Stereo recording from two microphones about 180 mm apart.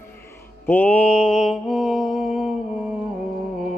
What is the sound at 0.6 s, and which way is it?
Mantra, 10° left (ahead or behind).